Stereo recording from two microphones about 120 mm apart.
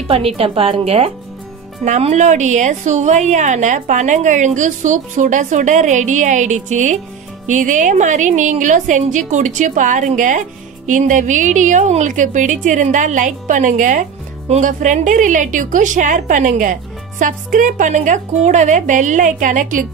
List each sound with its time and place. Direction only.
0.4 s a woman's voice: 55° right (ahead or behind)
1.9 s a woman's voice: 70° right (ahead or behind); by 19.8 s 90° right